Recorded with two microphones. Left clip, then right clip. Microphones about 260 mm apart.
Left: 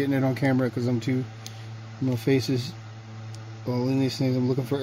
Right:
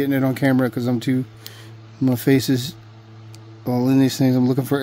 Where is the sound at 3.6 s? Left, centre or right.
Right.